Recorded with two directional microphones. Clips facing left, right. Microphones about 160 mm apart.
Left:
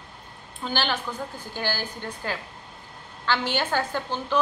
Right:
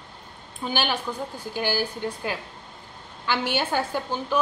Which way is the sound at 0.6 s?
10° right (ahead or behind).